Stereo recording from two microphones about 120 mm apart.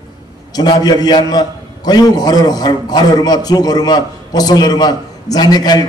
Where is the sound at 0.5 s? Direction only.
35° left (ahead or behind).